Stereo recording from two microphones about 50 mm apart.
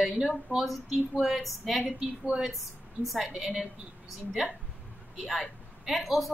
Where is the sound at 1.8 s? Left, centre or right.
Centre.